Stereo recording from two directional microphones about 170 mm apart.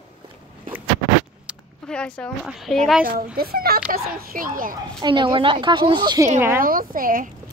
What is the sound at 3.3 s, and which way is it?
A child's voice, 60° right (ahead or behind).